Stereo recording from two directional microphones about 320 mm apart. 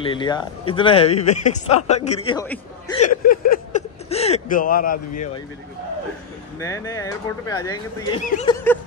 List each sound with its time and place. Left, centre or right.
0.0 s speech: centre
2.4 s speech: centre
3.3 s speech: left
6.6 s speech: centre
8.3 s a sound: left